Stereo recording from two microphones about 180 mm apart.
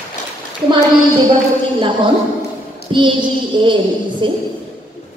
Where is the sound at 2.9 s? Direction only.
25° right (ahead or behind).